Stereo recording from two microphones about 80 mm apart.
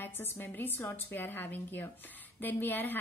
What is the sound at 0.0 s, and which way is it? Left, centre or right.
A woman's voice, left.